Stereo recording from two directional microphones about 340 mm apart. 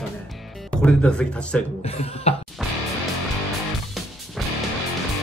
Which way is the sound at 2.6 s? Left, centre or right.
Centre.